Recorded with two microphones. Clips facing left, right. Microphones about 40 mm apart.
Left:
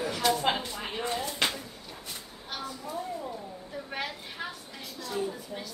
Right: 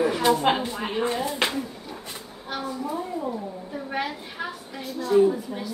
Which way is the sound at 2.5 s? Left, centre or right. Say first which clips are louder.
Right 6 dB; centre.